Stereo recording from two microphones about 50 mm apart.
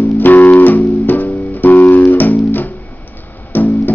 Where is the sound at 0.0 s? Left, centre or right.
Left.